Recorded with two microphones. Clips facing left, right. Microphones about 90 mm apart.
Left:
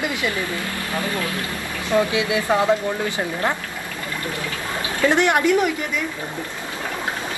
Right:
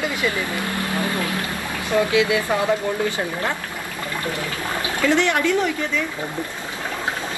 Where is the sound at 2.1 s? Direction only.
20° left (ahead or behind).